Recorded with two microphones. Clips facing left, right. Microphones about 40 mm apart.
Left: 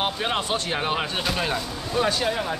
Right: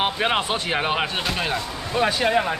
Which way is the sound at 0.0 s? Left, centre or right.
Right.